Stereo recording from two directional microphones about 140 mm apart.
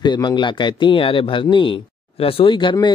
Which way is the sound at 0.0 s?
30° left (ahead or behind).